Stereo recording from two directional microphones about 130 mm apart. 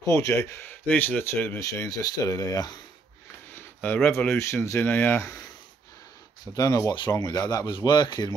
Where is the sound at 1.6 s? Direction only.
25° left (ahead or behind).